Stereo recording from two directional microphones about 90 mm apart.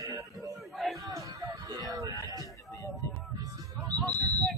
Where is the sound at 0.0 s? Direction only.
40° right (ahead or behind).